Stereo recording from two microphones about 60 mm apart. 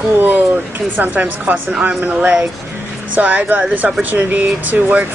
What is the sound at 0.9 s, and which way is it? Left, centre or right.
Speech, right.